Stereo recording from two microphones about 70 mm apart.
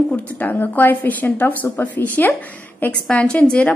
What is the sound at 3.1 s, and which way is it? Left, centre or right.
Speech, centre.